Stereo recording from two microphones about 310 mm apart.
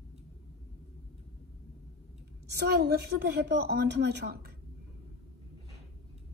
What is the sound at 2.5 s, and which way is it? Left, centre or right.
A woman's voice, right.